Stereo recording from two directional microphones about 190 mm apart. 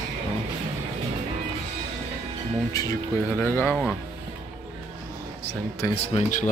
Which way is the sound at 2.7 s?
20° left (ahead or behind).